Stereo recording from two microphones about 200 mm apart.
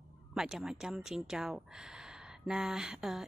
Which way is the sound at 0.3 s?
Centre (ahead or behind).